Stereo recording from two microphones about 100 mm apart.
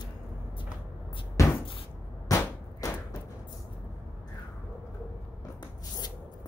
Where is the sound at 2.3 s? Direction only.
35° left (ahead or behind).